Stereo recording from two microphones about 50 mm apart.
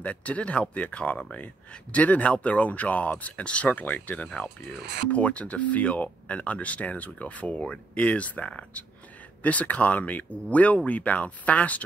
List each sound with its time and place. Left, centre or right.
0.0 s speech: left